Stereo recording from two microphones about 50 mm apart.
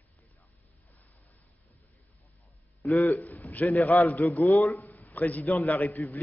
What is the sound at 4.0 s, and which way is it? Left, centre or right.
Speech, left.